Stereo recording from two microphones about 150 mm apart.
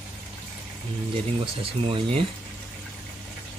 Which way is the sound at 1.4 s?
35° right (ahead or behind).